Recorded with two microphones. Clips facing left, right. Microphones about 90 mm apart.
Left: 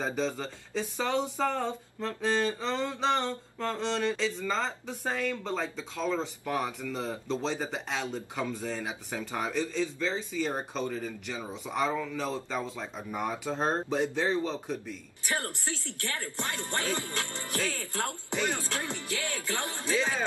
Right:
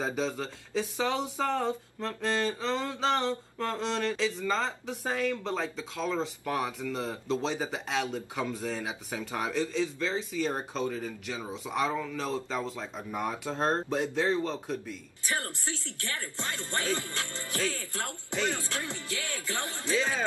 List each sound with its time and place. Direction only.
0.0 s speech: centre (ahead or behind)
15.2 s speech: 20° left (ahead or behind)